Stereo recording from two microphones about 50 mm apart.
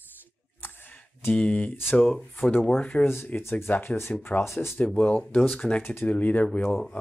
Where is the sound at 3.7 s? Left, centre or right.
Left.